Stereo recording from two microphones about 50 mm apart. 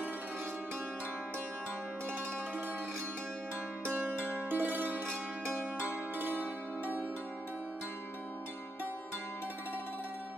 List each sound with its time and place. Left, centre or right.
4.1 s music: right
6.1 s zither: right